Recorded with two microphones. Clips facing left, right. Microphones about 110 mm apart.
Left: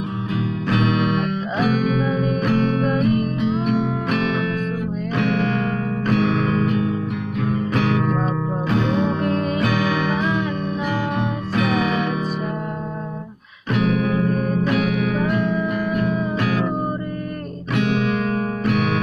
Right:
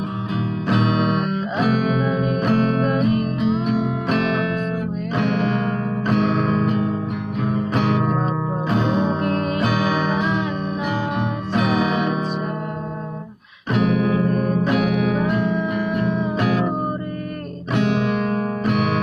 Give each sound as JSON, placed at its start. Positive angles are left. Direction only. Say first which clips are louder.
{"t": 0.7, "sound": "music", "louder": "right 1 dB", "side_deg": -25}
{"t": 2.1, "sound": "music", "louder": "even", "side_deg": 0}
{"t": 2.4, "sound": "music", "louder": "right 1 dB", "side_deg": -30}
{"t": 3.1, "sound": "music", "louder": "even", "side_deg": 0}
{"t": 5.1, "sound": "music", "louder": "even", "side_deg": -10}
{"t": 9.2, "sound": "music", "louder": "even", "side_deg": -5}
{"t": 9.8, "sound": "music", "louder": "even", "side_deg": -20}
{"t": 14.3, "sound": "music", "louder": "right 1 dB", "side_deg": 0}